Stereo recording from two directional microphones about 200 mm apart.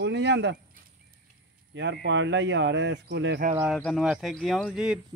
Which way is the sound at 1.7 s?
60° right (ahead or behind).